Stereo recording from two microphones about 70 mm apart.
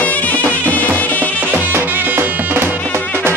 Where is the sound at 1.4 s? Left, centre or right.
Right.